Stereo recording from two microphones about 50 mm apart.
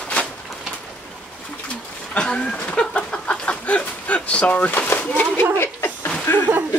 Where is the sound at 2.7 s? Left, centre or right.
Left.